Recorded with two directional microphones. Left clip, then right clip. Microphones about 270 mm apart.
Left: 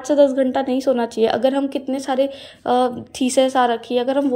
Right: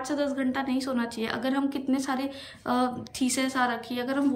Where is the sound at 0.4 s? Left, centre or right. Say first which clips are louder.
Left 10 dB; centre.